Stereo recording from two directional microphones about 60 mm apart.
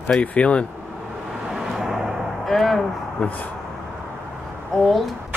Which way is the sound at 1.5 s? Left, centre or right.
Centre.